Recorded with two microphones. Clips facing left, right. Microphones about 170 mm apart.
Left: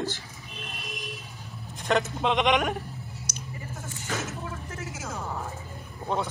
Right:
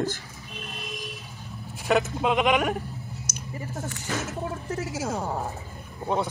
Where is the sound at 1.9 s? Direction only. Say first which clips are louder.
Right 2 dB; 5° right (ahead or behind).